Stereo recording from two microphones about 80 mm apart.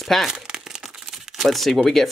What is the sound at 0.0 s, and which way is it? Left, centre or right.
Speech, centre.